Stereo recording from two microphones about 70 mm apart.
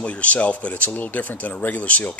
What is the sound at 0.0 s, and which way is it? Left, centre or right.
Speech, centre.